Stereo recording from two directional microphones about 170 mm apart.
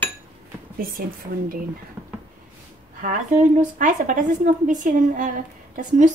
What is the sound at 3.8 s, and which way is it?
A woman's voice, 50° right (ahead or behind).